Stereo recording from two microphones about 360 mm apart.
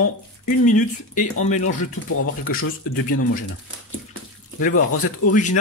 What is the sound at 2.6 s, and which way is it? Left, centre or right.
Speech, left.